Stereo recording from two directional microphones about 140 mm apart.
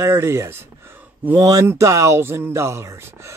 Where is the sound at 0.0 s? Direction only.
20° right (ahead or behind).